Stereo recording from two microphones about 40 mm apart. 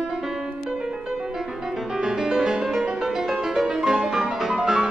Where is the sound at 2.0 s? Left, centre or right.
Centre.